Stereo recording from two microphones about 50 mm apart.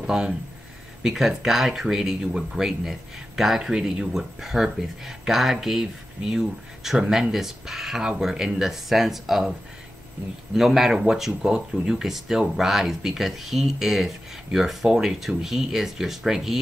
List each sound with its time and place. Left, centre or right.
0.0 s speech: centre
10.5 s speech: centre